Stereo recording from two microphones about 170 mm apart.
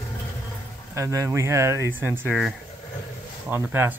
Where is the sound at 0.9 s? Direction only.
20° right (ahead or behind).